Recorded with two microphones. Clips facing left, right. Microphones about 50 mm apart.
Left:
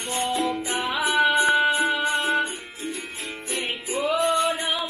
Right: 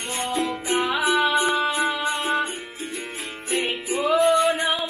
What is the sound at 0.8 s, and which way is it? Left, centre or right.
Music, right.